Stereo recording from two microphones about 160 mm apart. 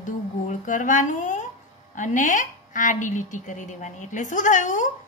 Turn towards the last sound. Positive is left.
turn(degrees=50)  # may be behind; listen again after turning